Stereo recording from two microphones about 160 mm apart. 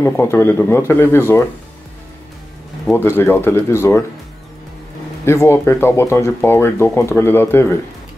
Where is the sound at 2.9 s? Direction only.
15° left (ahead or behind).